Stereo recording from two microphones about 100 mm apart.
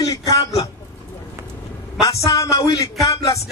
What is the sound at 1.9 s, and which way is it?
A man's voice, 35° left (ahead or behind).